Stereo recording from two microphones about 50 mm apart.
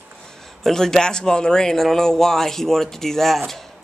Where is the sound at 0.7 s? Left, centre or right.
Centre.